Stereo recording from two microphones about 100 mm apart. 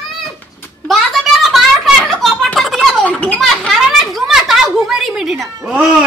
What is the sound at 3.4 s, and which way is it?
A child's voice, centre (ahead or behind).